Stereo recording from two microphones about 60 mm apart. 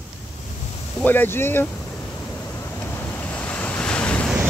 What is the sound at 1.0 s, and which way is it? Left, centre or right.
Speech, left.